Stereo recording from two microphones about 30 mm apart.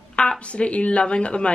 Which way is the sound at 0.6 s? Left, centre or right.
Left.